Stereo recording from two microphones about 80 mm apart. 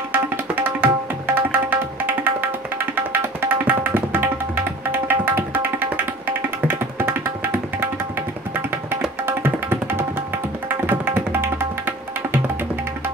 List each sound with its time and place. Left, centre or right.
0.1 s tabla: right
7.0 s music: right
9.2 s tabla: right